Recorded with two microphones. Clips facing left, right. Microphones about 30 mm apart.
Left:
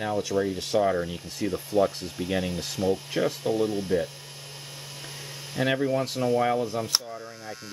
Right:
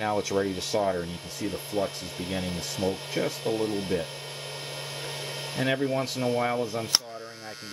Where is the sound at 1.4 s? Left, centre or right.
Left.